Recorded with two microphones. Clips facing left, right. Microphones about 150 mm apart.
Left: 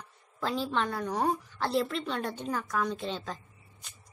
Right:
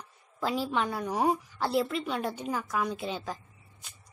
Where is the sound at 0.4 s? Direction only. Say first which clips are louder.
Right 1 dB; 10° right (ahead or behind).